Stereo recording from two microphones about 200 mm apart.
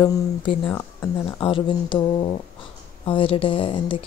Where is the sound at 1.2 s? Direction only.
25° left (ahead or behind).